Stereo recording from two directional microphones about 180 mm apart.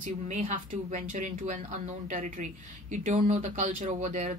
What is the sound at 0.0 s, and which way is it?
Speech, 45° right (ahead or behind).